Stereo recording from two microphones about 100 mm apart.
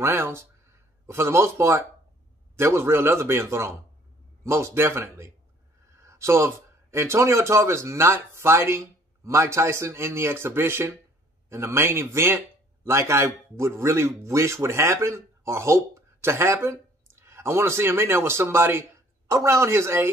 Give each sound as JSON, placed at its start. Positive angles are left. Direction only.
{"t": 0.0, "sound": "a man's voice", "side_deg": -25}